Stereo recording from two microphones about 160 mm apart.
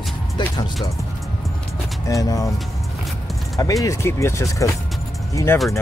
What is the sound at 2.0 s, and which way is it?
Speech, 20° left (ahead or behind).